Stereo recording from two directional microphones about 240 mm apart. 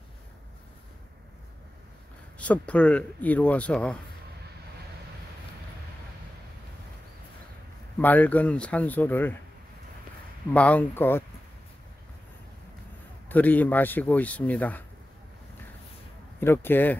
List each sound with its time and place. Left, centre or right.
2.3 s speech: centre
8.0 s speech: centre
10.5 s speech: centre
13.3 s speech: centre
16.3 s speech: centre